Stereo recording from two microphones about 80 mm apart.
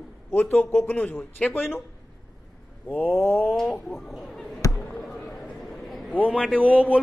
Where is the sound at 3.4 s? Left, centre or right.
Centre.